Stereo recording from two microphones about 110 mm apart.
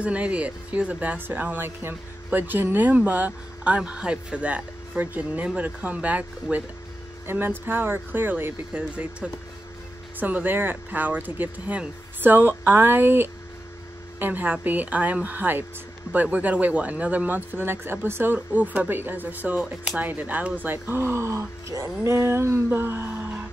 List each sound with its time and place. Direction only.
0.0 s speech: 10° right (ahead or behind)